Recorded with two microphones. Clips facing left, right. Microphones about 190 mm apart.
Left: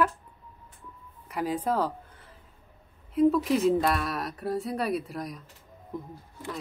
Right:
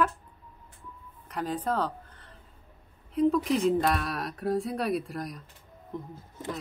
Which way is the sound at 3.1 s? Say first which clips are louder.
Left 2 dB; 5° left (ahead or behind).